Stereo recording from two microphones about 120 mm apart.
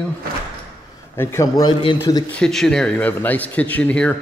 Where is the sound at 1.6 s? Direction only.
40° left (ahead or behind).